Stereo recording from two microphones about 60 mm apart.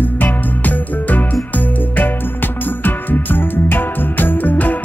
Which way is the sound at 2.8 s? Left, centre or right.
Left.